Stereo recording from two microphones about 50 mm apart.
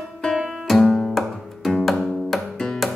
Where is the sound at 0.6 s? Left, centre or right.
Centre.